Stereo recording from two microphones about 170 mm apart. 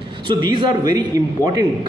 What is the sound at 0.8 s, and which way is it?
Speech, 25° right (ahead or behind).